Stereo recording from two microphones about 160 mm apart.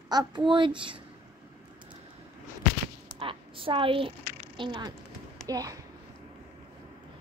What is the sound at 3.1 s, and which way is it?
A woman's voice, 35° right (ahead or behind).